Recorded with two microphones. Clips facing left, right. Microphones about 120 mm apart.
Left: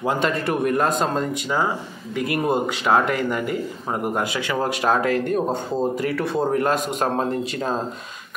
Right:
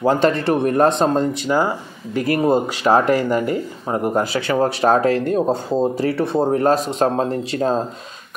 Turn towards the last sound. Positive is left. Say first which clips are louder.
# right 5 dB
turn(degrees=-35)  # may be behind; listen again after turning